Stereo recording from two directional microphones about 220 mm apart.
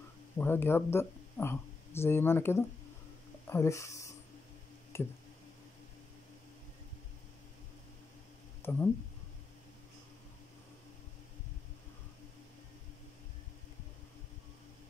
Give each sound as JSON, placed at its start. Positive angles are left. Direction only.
{"t": 0.4, "sound": "speech", "side_deg": 10}
{"t": 4.9, "sound": "squish", "side_deg": 10}
{"t": 8.6, "sound": "speech", "side_deg": 10}